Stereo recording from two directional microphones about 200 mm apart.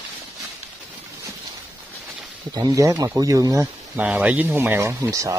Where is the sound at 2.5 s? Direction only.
20° right (ahead or behind).